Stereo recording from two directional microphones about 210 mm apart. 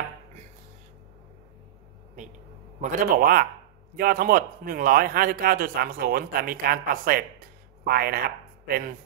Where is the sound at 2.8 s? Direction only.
40° right (ahead or behind).